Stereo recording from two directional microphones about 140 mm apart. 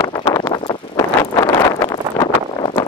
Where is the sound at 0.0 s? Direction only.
25° left (ahead or behind).